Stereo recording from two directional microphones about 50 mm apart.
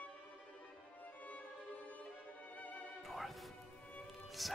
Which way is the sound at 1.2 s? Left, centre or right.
Left.